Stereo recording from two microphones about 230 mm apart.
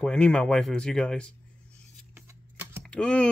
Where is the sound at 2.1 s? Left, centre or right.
Centre.